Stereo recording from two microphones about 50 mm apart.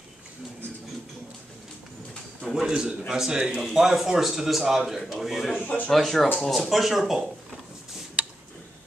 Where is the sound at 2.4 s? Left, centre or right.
Centre.